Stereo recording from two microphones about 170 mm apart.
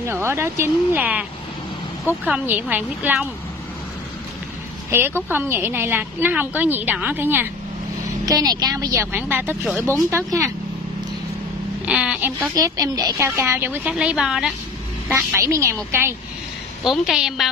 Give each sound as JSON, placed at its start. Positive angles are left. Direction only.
{"t": 0.0, "sound": "a woman's voice", "side_deg": -15}
{"t": 2.2, "sound": "a woman's voice", "side_deg": -10}
{"t": 4.9, "sound": "a woman's voice", "side_deg": -15}
{"t": 8.3, "sound": "a woman's voice", "side_deg": -20}
{"t": 11.8, "sound": "a woman's voice", "side_deg": -5}
{"t": 12.5, "sound": "a woman's voice", "side_deg": -20}
{"t": 15.0, "sound": "a woman's voice", "side_deg": -15}
{"t": 16.8, "sound": "a woman's voice", "side_deg": 0}